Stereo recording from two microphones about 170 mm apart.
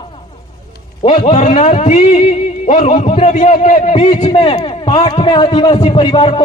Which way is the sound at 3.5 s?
55° left (ahead or behind).